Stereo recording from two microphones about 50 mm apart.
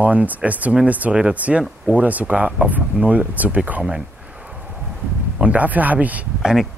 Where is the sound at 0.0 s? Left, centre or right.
Right.